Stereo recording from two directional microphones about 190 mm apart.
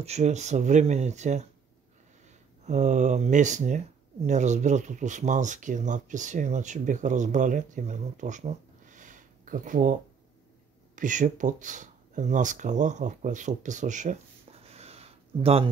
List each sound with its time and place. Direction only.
0.0 s speech: 35° right (ahead or behind)
2.6 s speech: 40° right (ahead or behind)
11.0 s speech: 45° right (ahead or behind)